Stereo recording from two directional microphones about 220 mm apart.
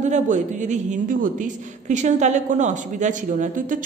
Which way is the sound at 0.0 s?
35° right (ahead or behind).